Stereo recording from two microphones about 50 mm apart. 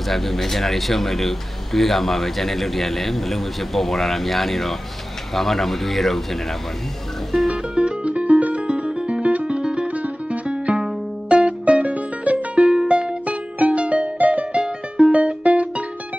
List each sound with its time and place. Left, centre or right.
0.1 s speech: centre
7.4 s music: centre
12.5 s music: centre